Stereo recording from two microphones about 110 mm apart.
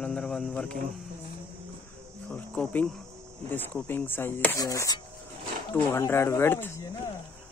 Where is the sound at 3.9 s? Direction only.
20° left (ahead or behind).